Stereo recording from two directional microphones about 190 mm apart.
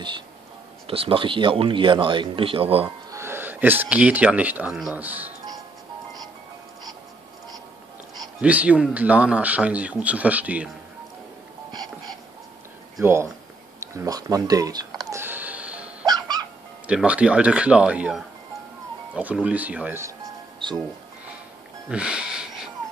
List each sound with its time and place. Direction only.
0.8 s speech: 30° right (ahead or behind)
3.1 s speech: 15° right (ahead or behind)
8.4 s speech: 5° right (ahead or behind)
13.0 s speech: 15° right (ahead or behind)
13.7 s a sound: 15° right (ahead or behind)
16.1 s music: 20° right (ahead or behind)
16.8 s speech: 5° right (ahead or behind)
20.6 s music: 25° right (ahead or behind)
21.8 s speech: 5° right (ahead or behind)